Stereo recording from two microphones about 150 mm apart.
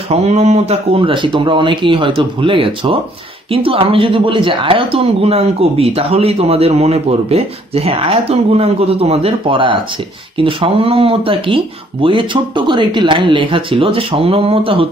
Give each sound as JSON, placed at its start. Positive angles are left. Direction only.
{"t": 0.1, "sound": "speech", "side_deg": -45}